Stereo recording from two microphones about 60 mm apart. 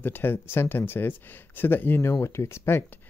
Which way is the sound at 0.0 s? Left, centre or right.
Left.